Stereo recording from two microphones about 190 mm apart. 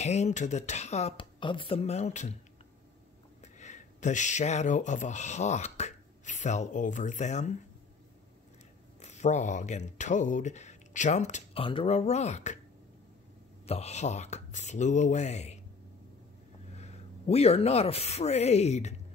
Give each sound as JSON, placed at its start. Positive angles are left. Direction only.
{"t": 0.0, "sound": "speech", "side_deg": 35}
{"t": 3.5, "sound": "speech", "side_deg": 40}
{"t": 9.0, "sound": "speech", "side_deg": 40}
{"t": 13.7, "sound": "speech", "side_deg": 35}
{"t": 16.7, "sound": "speech", "side_deg": 35}